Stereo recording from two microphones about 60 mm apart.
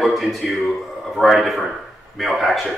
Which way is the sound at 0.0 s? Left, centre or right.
Centre.